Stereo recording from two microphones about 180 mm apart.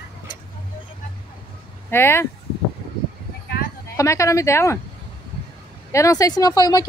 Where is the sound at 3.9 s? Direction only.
15° left (ahead or behind).